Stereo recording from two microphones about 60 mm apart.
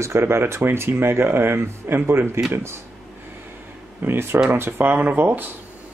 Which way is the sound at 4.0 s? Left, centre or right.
Right.